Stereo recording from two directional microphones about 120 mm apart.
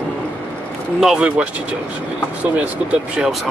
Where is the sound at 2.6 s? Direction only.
5° right (ahead or behind).